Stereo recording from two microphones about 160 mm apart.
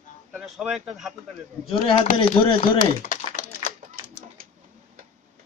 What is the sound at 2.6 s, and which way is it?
Typing, 50° left (ahead or behind).